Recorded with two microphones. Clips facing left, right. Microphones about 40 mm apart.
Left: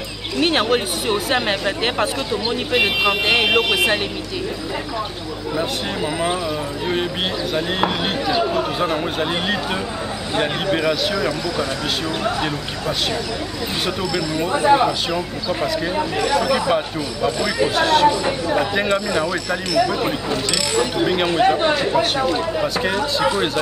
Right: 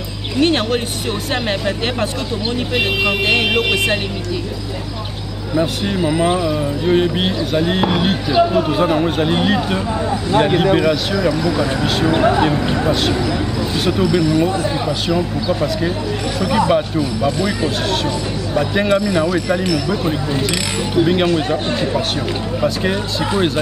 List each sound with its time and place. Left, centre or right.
0.4 s speech: centre
5.6 s speech: centre
11.4 s speech: centre
12.1 s speech: right
13.8 s speech: centre
14.5 s speech: left
14.9 s speech: centre
16.3 s speech: centre
18.0 s speech: centre
18.8 s speech: centre
21.0 s speech: centre